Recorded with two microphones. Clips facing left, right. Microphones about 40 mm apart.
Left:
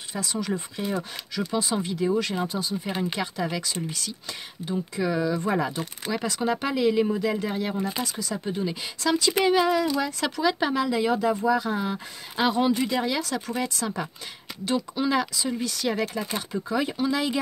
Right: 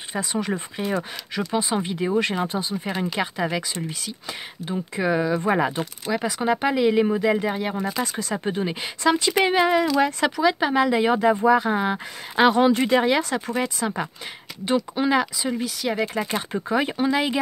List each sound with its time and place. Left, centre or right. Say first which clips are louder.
0.1 s speech: right 3 dB; right
6.0 s speech: right 3 dB; centre
8.0 s speech: right 4 dB; right
9.0 s speech: right 3 dB; right
10.2 s speech: right 4 dB; centre
10.9 s speech: right 4 dB; right
12.4 s speech: right 6 dB; right
13.3 s speech: right 3 dB; right; by 16.0 s centre
16.0 s speech: right 4 dB; right